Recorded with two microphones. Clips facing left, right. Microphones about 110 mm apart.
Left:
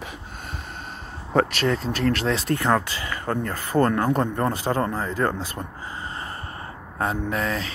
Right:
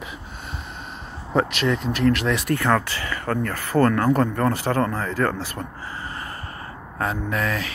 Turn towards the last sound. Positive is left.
turn(degrees=30)  # may be behind; listen again after turning